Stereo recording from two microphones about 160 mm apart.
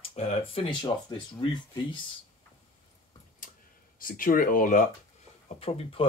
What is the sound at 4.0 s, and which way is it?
Speech, 60° left (ahead or behind).